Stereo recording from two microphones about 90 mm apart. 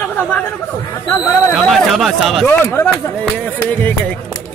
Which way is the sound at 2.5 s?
25° left (ahead or behind).